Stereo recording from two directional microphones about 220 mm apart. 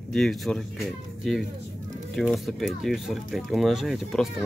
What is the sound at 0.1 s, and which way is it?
Speech, centre (ahead or behind).